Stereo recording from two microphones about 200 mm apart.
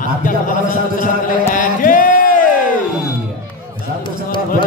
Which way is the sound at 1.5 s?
45° left (ahead or behind).